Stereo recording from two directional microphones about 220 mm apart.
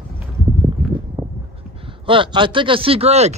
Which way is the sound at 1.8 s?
25° right (ahead or behind).